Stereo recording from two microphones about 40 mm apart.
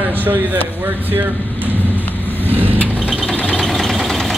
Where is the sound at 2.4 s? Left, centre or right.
Right.